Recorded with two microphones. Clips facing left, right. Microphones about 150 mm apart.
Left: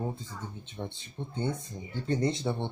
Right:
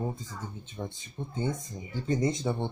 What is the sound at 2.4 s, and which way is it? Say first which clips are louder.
Speech: right 1 dB; centre (ahead or behind).